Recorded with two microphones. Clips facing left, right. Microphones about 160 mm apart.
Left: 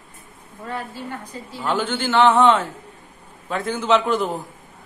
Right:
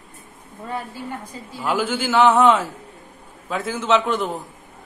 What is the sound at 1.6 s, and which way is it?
A man's voice, 10° right (ahead or behind).